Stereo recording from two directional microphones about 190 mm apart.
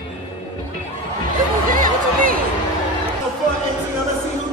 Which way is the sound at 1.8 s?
45° right (ahead or behind).